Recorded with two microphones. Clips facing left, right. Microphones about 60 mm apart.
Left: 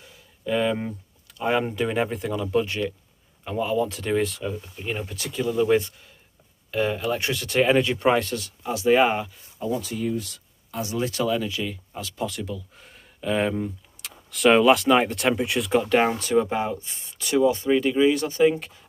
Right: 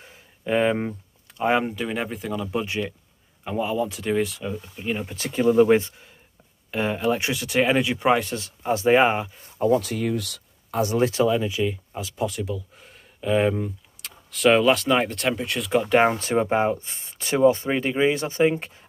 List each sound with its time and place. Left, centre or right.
0.0 s a sound: right
1.7 s speech: centre
2.6 s speech: centre
5.1 s speech: right
6.7 s speech: centre
8.3 s speech: right
9.6 s speech: right
10.7 s speech: right
11.1 s speech: centre
16.0 s speech: right